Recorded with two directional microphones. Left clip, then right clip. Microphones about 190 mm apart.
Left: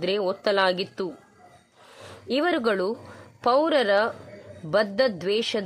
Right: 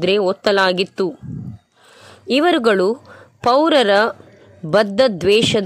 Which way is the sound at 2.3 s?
30° right (ahead or behind).